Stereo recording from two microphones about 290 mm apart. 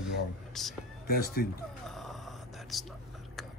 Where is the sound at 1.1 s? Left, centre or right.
Left.